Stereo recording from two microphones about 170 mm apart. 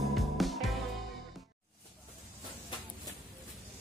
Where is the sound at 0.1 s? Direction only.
Centre (ahead or behind).